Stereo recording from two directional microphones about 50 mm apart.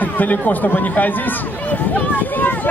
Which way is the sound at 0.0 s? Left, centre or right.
Left.